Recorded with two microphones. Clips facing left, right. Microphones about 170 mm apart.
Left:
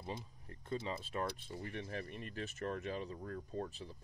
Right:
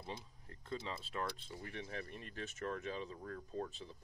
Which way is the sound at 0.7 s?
15° left (ahead or behind).